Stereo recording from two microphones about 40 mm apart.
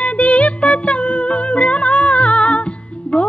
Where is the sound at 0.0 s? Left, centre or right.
Left.